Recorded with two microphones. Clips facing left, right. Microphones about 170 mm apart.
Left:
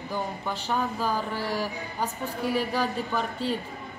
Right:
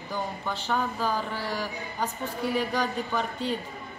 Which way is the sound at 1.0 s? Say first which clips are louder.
Left 1 dB; 15° left (ahead or behind).